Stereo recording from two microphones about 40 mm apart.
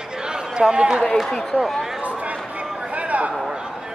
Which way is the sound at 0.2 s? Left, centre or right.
Centre.